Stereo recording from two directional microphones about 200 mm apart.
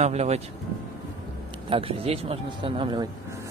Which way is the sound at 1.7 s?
30° right (ahead or behind).